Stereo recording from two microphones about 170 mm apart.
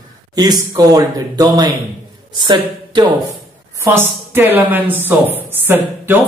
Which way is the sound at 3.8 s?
15° right (ahead or behind).